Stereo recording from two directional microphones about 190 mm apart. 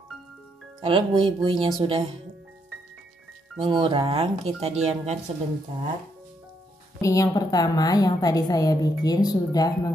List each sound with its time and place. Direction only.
0.7 s speech: 25° right (ahead or behind)
3.5 s speech: 25° right (ahead or behind)
7.0 s a woman's voice: 15° left (ahead or behind)